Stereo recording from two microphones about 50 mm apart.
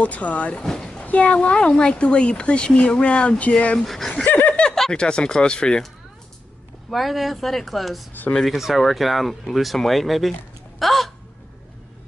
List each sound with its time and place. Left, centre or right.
0.0 s speech: left; by 1.0 s centre
1.0 s speech: left
3.8 s speech: centre
4.2 s snicker: left
4.9 s speech: centre
6.9 s speech: centre
10.8 s hiccup: centre